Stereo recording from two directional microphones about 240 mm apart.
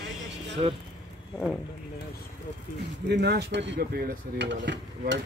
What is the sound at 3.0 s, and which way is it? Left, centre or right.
Speech, right.